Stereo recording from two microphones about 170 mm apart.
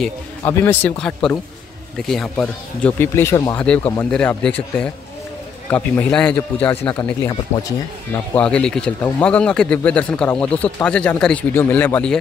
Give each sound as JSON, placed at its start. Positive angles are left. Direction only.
{"t": 0.4, "sound": "speech", "side_deg": 15}
{"t": 2.0, "sound": "speech", "side_deg": 0}
{"t": 3.5, "sound": "speech", "side_deg": 5}
{"t": 5.7, "sound": "speech", "side_deg": 10}
{"t": 8.4, "sound": "speech", "side_deg": 5}